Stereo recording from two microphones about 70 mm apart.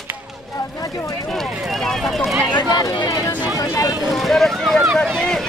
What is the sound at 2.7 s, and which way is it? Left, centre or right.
Speech, left.